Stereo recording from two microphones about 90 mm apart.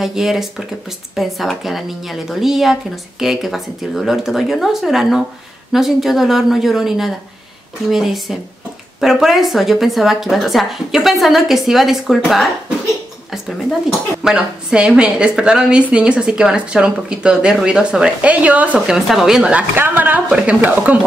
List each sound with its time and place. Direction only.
0.0 s a woman's voice: 5° right (ahead or behind)
14.2 s a woman's voice: 10° right (ahead or behind)
19.0 s a woman's voice: 5° right (ahead or behind)
19.8 s a woman's voice: 20° right (ahead or behind)